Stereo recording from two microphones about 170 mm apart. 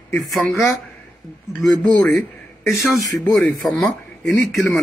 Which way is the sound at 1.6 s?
Centre (ahead or behind).